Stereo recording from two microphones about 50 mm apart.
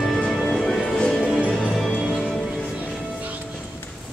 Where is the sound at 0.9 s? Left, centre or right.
Centre.